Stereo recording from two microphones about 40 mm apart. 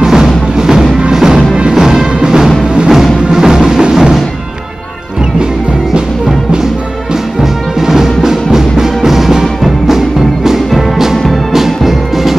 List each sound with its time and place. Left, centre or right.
0.0 s music: centre
7.8 s music: centre